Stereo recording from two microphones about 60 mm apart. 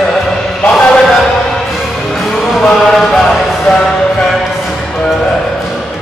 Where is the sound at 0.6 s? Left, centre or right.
Centre.